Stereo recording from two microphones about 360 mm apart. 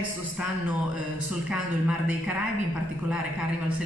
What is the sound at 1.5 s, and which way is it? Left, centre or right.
Speech, centre.